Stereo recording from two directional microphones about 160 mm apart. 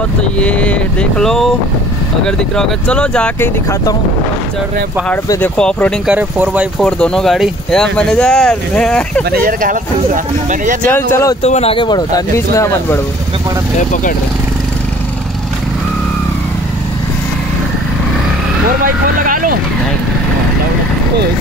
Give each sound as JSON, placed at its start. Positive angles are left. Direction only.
{"t": 0.2, "sound": "speech", "side_deg": 5}
{"t": 5.6, "sound": "speech", "side_deg": 5}
{"t": 6.0, "sound": "speech", "side_deg": -10}
{"t": 6.9, "sound": "speech", "side_deg": 5}
{"t": 9.3, "sound": "speech", "side_deg": -65}
{"t": 10.9, "sound": "speech", "side_deg": 15}
{"t": 11.4, "sound": "speech", "side_deg": 40}
{"t": 19.2, "sound": "a sound", "side_deg": -60}